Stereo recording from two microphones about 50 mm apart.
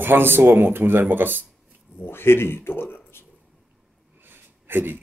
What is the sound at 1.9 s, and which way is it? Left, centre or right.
Speech, left.